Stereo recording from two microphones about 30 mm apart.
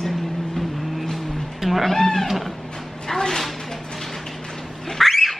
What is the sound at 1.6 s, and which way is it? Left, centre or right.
Speech, centre.